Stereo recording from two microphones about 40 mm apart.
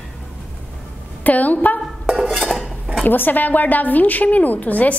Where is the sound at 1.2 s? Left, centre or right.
Left.